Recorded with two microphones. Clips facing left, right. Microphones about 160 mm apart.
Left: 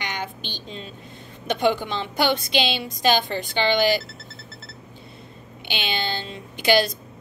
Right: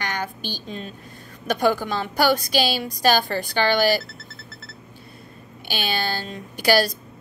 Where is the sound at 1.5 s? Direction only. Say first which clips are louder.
Right 1 dB; 20° left (ahead or behind).